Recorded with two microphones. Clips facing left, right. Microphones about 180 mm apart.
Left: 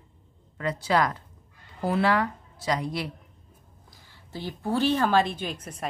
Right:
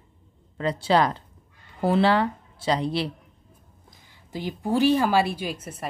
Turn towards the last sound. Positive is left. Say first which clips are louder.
# right 2 dB
turn(degrees=-5)  # may be behind; listen again after turning